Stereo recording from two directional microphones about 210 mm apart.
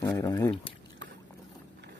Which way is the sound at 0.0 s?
15° left (ahead or behind).